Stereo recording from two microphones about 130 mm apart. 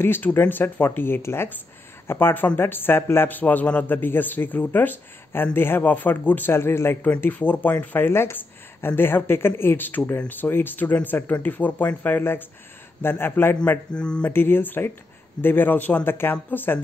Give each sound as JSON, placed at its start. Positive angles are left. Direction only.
{"t": 0.0, "sound": "speech", "side_deg": 15}